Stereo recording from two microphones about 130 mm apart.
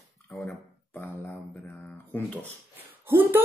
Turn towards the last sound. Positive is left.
turn(degrees=-15)  # may be behind; listen again after turning